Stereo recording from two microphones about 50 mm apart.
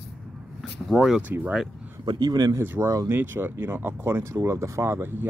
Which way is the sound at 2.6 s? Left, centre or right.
Right.